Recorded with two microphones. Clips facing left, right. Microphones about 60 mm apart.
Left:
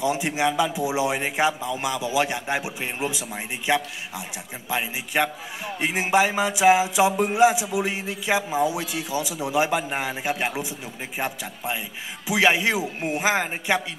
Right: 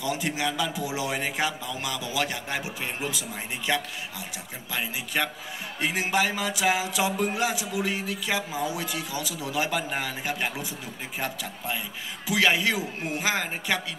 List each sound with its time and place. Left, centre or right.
0.0 s music: left